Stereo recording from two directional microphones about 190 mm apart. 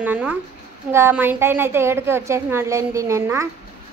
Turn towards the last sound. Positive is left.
turn(degrees=-15)  # may be behind; listen again after turning